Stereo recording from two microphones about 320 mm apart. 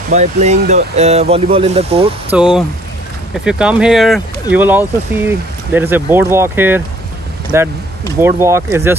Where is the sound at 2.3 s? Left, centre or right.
Centre.